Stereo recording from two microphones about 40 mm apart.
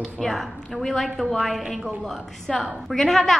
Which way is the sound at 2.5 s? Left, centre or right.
Centre.